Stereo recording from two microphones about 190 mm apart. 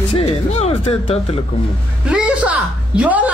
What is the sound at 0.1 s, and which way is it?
Music, 35° left (ahead or behind).